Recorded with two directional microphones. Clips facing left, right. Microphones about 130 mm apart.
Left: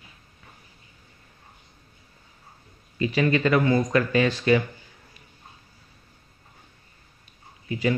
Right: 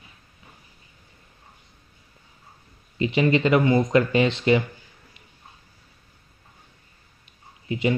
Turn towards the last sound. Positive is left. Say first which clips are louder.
# right 1 dB
turn(degrees=-25)  # may be behind; listen again after turning